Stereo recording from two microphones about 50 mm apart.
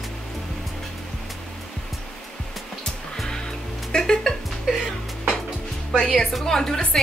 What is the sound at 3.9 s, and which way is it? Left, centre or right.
Music, centre.